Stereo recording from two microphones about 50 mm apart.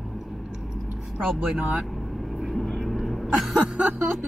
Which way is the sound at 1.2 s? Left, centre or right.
Centre.